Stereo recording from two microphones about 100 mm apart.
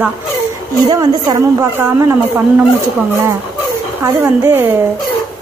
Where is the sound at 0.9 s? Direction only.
40° right (ahead or behind).